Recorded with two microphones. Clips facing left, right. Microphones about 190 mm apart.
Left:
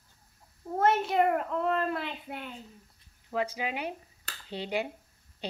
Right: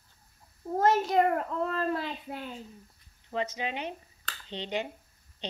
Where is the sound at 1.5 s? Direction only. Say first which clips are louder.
Left 1 dB; 35° right (ahead or behind).